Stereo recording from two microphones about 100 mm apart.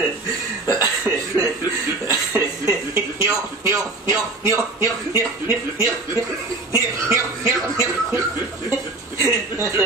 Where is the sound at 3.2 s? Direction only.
30° right (ahead or behind).